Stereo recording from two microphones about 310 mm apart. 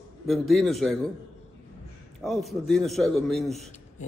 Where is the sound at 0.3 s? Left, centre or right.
Centre.